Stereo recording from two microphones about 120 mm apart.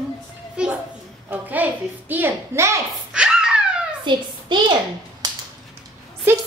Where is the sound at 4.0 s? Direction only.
40° right (ahead or behind).